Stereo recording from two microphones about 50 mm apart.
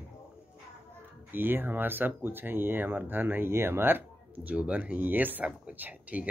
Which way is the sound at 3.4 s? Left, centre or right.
Right.